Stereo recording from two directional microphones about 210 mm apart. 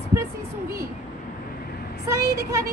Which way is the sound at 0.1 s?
15° right (ahead or behind).